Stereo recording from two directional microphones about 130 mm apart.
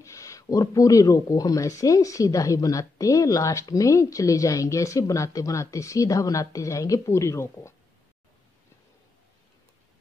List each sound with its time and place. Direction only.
0.0 s speech: 25° left (ahead or behind)